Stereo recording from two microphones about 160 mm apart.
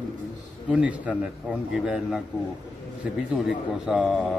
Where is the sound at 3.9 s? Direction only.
5° right (ahead or behind).